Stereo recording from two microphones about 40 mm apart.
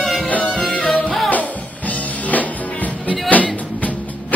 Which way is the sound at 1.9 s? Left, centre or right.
Left.